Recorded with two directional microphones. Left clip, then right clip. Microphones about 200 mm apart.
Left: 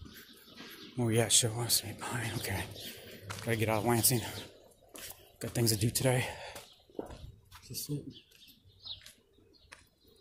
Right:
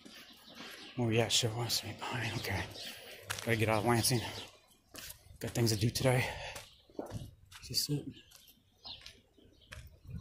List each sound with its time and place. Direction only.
0.9 s speech: 15° left (ahead or behind)
3.0 s speech: centre (ahead or behind)
5.4 s speech: 10° left (ahead or behind)
7.6 s speech: 10° right (ahead or behind)
9.7 s bird: 5° left (ahead or behind)